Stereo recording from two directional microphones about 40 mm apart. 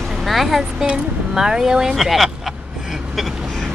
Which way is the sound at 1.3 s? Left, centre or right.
Centre.